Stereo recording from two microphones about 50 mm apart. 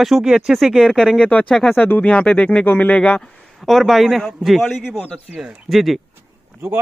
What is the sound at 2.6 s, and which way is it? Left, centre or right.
Speech, left.